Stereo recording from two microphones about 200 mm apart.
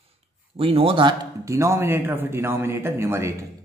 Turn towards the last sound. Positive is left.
turn(degrees=-10)  # may be behind; listen again after turning